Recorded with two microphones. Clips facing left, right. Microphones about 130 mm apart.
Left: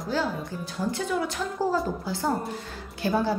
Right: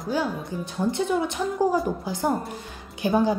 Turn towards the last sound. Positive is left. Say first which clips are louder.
# right 3 dB
turn(degrees=-15)  # may be behind; listen again after turning